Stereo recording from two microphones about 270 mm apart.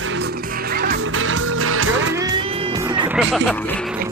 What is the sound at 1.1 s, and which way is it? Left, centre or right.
Music, right.